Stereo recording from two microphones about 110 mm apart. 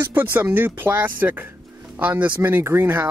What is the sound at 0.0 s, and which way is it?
Speech, 20° right (ahead or behind).